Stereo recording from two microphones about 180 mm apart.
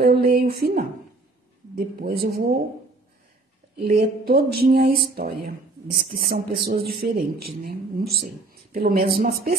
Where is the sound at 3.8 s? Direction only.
60° right (ahead or behind).